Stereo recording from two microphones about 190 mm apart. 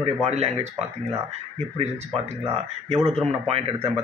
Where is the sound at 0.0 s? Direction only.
35° right (ahead or behind).